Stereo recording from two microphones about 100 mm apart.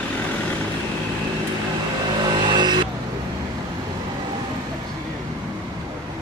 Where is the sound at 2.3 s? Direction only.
50° right (ahead or behind).